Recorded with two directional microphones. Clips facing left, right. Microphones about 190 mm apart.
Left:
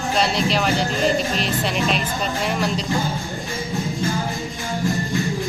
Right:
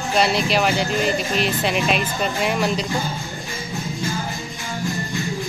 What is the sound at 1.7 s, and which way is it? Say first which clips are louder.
A woman's voice: right 1 dB; 5° right (ahead or behind).